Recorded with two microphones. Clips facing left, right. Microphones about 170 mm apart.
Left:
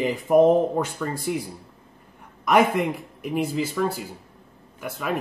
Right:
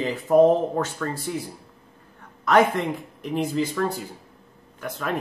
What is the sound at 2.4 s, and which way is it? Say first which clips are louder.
Speech: even; 10° left (ahead or behind).